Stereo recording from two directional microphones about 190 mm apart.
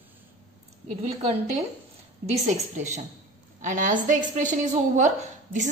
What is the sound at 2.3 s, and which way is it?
A woman's voice, 35° right (ahead or behind).